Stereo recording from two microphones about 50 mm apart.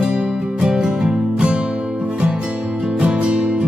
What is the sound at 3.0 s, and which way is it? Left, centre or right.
Music, right.